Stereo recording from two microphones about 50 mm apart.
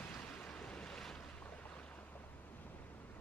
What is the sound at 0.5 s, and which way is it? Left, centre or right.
Waves, centre.